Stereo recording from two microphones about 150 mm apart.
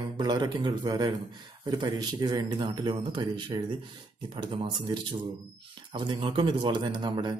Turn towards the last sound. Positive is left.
turn(degrees=-30)  # may be behind; listen again after turning